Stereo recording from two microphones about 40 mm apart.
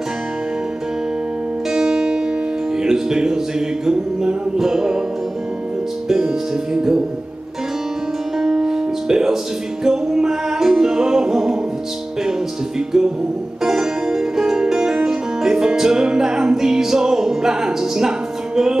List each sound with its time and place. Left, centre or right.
1.7 s music: centre
6.0 s music: centre
8.4 s music: centre